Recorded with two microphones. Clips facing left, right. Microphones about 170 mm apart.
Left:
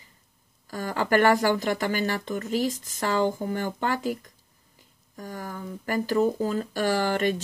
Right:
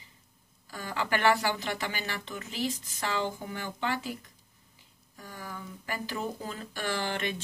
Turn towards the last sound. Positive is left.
turn(degrees=40)  # may be behind; listen again after turning